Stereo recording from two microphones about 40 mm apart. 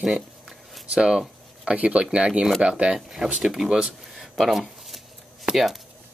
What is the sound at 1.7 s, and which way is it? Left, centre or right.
Speech, right.